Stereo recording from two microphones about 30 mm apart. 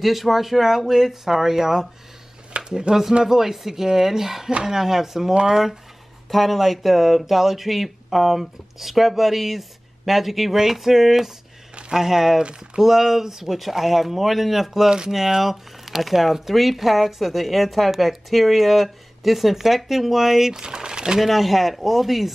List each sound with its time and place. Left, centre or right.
0.0 s speech: centre
2.5 s a sound: right
2.9 s speech: centre
13.6 s a woman's voice: centre; by 21.2 s right
21.2 s a woman's voice: centre